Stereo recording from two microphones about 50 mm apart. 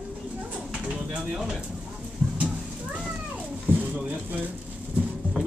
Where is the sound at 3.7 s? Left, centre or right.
Right.